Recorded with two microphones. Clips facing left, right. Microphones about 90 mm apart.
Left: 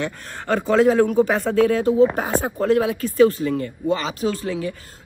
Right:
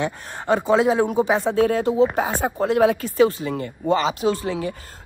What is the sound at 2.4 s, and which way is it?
Speech, 30° right (ahead or behind).